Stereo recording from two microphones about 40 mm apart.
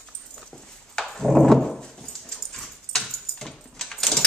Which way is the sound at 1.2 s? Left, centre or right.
Centre.